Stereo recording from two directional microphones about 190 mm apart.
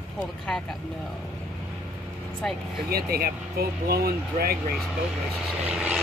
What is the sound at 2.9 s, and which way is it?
Speech, 55° right (ahead or behind).